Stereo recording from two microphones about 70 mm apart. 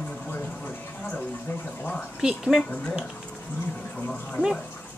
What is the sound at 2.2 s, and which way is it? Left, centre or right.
Speech, centre.